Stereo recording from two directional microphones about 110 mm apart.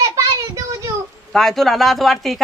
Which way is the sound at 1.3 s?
5° left (ahead or behind).